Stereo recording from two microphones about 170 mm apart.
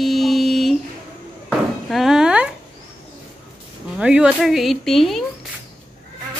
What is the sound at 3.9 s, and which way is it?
Speech, 5° right (ahead or behind).